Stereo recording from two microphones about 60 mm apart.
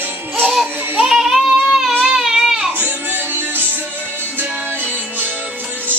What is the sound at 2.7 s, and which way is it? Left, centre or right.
Music, right.